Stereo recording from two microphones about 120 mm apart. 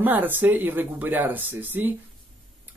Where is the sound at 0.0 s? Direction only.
15° right (ahead or behind).